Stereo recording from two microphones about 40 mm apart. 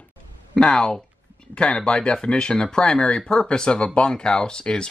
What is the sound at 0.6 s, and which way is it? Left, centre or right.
Speech, left.